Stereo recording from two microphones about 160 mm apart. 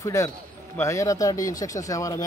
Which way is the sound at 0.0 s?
20° left (ahead or behind).